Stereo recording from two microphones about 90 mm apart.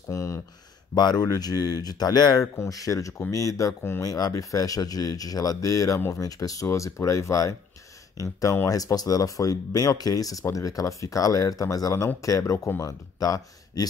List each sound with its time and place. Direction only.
0.1 s speech: 30° left (ahead or behind)
0.9 s speech: 50° left (ahead or behind)
2.5 s speech: 35° left (ahead or behind)
4.0 s speech: 40° left (ahead or behind)
6.2 s speech: 40° left (ahead or behind)
13.2 s speech: 45° left (ahead or behind)